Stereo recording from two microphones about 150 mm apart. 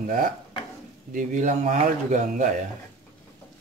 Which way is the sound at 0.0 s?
65° right (ahead or behind).